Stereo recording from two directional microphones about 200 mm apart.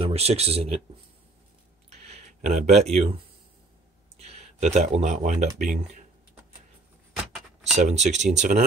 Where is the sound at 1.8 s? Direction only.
30° right (ahead or behind).